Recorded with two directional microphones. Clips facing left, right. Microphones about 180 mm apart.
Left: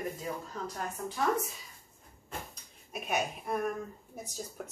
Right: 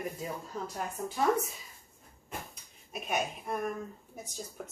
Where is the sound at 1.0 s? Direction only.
20° right (ahead or behind).